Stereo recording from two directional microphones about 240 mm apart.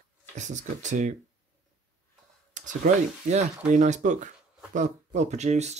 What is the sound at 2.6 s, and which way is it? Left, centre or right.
Speech, right.